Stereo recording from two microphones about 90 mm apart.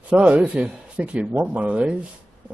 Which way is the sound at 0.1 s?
15° right (ahead or behind).